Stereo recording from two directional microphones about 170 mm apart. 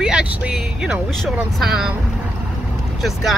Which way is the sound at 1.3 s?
5° right (ahead or behind).